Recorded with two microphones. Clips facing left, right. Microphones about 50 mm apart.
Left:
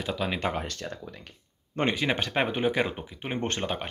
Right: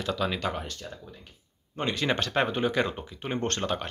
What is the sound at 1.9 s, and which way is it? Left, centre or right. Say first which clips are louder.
Speech: right 3 dB; centre.